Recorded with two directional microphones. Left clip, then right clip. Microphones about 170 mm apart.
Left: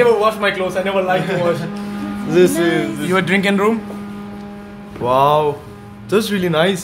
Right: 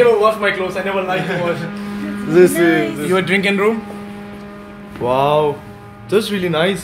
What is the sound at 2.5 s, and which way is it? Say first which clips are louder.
Speech: right 3 dB; 15° left (ahead or behind).